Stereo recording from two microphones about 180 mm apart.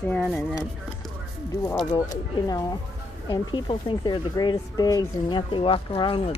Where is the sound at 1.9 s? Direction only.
20° left (ahead or behind).